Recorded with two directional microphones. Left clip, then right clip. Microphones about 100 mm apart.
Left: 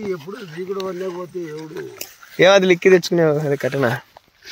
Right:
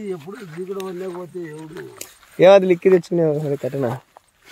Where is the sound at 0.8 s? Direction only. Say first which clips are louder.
Left 3 dB; 20° right (ahead or behind).